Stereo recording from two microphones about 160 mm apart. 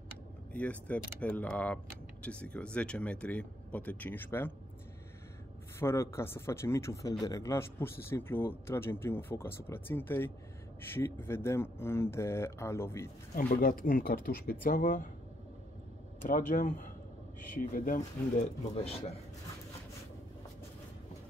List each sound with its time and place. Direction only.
0.5 s speech: 10° left (ahead or behind)
5.8 s speech: 15° left (ahead or behind)
13.4 s speech: 60° left (ahead or behind)
16.3 s speech: 55° left (ahead or behind); by 19.1 s 40° left (ahead or behind)